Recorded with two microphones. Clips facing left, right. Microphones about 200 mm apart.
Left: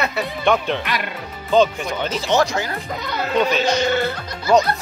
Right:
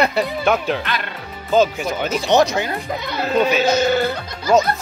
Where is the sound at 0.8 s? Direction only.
15° left (ahead or behind).